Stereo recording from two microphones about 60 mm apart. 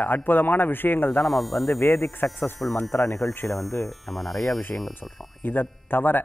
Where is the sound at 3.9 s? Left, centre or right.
Centre.